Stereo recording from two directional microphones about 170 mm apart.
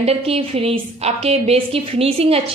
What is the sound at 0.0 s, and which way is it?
A woman's voice, 35° right (ahead or behind).